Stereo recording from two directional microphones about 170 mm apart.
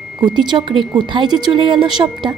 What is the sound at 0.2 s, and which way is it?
Speech, 25° right (ahead or behind).